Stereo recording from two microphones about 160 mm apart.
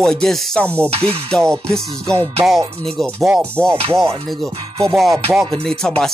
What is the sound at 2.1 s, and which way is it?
Music, 35° right (ahead or behind).